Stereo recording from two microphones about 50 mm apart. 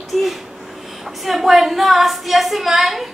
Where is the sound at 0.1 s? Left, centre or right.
Centre.